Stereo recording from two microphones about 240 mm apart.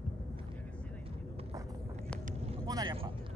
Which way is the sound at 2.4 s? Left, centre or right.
Centre.